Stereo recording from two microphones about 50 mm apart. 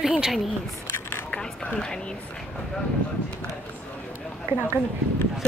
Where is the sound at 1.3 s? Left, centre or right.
Left.